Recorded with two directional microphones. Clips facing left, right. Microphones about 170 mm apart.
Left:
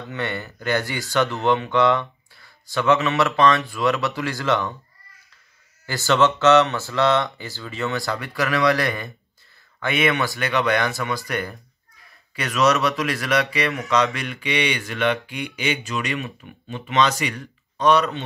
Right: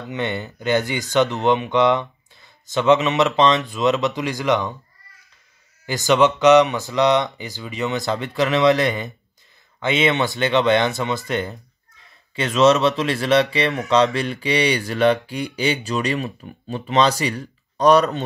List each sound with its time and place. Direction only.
0.1 s speech: 20° right (ahead or behind)
5.9 s speech: 15° right (ahead or behind); by 18.2 s 40° right (ahead or behind)